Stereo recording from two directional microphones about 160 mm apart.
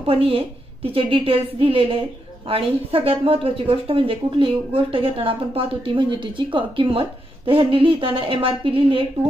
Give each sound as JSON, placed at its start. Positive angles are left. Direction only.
{"t": 0.0, "sound": "speech", "side_deg": -35}